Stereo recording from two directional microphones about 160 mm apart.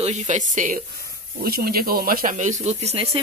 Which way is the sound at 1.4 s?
70° right (ahead or behind).